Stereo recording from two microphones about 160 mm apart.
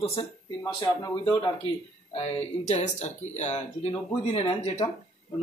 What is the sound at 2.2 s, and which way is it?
Speech, 45° left (ahead or behind).